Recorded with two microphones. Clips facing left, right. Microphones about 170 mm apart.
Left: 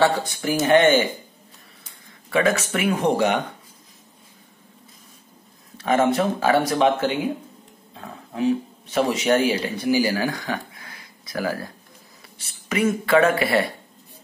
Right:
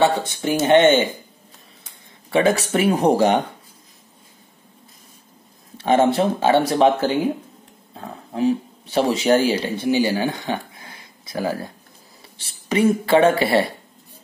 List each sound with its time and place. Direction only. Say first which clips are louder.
0.0 s speech: right 2 dB; 25° right (ahead or behind)
2.2 s speech: right 3 dB; 30° right (ahead or behind)
5.8 s speech: right 3 dB; 30° right (ahead or behind)